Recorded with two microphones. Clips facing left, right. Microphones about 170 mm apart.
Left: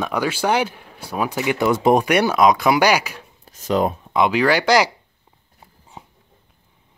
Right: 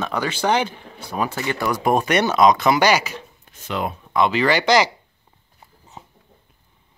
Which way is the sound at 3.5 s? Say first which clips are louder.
Left 7 dB; 40° left (ahead or behind).